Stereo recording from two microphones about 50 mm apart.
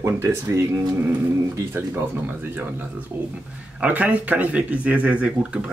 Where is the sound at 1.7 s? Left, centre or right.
Right.